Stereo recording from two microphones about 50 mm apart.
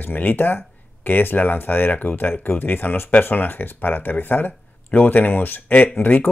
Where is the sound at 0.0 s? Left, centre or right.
Left.